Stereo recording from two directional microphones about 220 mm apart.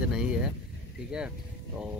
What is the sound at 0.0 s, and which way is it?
Vehicle, 5° right (ahead or behind).